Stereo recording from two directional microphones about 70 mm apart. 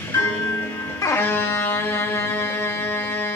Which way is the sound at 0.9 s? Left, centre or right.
Left.